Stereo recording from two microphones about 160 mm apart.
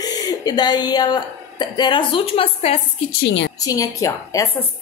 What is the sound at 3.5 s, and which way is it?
Speech, 20° left (ahead or behind).